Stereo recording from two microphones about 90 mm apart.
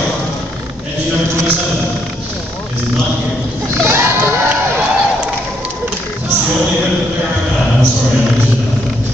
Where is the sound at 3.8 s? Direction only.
25° right (ahead or behind).